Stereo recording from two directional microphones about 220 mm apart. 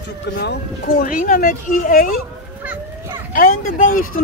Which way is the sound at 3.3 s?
40° left (ahead or behind).